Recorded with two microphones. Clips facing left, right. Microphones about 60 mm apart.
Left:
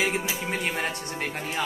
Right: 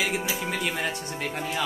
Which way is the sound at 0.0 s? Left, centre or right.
Left.